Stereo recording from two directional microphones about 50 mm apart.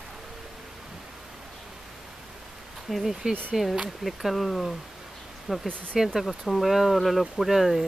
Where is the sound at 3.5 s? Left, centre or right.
Centre.